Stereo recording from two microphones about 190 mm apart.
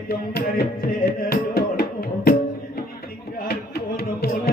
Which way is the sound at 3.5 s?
55° left (ahead or behind).